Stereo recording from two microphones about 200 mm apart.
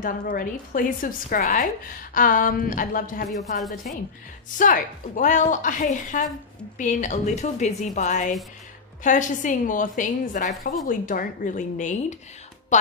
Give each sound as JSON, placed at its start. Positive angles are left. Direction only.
{"t": 0.0, "sound": "a woman's voice", "side_deg": 45}
{"t": 4.6, "sound": "a woman's voice", "side_deg": 40}